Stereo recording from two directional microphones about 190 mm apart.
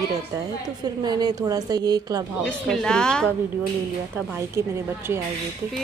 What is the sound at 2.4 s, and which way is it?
Speech, 5° left (ahead or behind).